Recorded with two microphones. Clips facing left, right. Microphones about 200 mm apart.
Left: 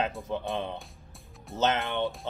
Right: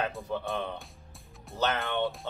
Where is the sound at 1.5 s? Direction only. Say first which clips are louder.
Left 2 dB; 20° left (ahead or behind).